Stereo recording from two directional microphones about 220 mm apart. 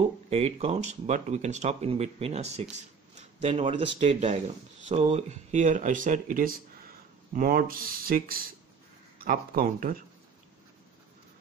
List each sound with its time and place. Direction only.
0.3 s speech: 30° right (ahead or behind)
3.2 s a sound: 30° right (ahead or behind)
4.0 s speech: 30° right (ahead or behind)